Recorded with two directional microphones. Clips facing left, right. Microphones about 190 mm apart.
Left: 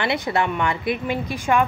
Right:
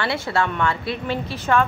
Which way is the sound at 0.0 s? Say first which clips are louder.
Left 1 dB; 20° left (ahead or behind).